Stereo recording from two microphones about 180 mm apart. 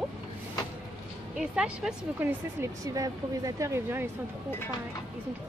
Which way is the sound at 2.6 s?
20° right (ahead or behind).